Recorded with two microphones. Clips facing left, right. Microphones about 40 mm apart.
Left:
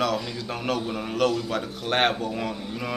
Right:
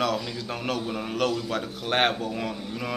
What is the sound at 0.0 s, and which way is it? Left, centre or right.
A man's voice, centre.